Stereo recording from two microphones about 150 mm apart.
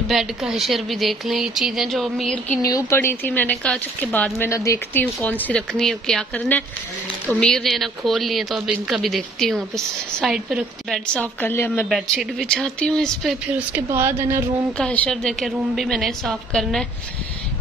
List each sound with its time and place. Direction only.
0.1 s speech: centre (ahead or behind)
2.6 s speech: 20° left (ahead or behind); by 11.0 s centre (ahead or behind)
11.1 s speech: 15° left (ahead or behind)
11.9 s speech: centre (ahead or behind)
13.7 s a woman's voice: 15° right (ahead or behind)
14.8 s speech: 5° left (ahead or behind)